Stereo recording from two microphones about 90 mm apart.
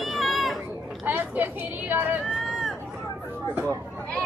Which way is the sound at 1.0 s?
20° right (ahead or behind).